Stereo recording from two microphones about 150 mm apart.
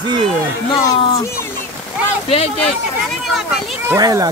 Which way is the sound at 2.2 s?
40° left (ahead or behind).